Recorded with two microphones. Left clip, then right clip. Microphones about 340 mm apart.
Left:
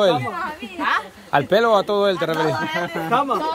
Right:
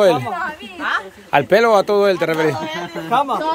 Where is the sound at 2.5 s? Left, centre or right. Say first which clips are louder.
Left 2 dB; centre.